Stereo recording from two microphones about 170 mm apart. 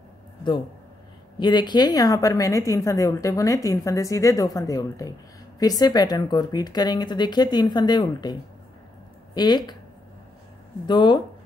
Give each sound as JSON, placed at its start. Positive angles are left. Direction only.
{"t": 1.4, "sound": "a woman's voice", "side_deg": 25}
{"t": 10.9, "sound": "a woman's voice", "side_deg": 25}